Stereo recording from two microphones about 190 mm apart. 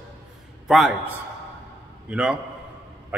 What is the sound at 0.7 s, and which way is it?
A man's voice, centre (ahead or behind).